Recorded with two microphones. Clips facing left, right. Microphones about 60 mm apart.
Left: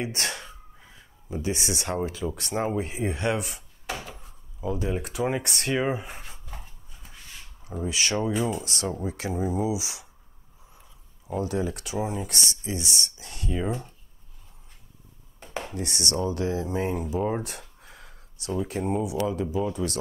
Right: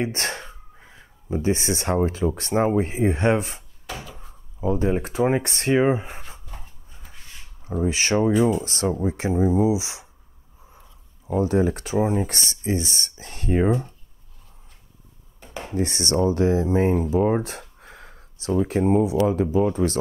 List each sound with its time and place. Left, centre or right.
0.0 s speech: right
6.9 s dog: right
7.6 s speech: right
15.7 s speech: right